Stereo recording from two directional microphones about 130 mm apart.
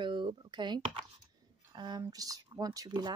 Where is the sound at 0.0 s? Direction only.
35° right (ahead or behind).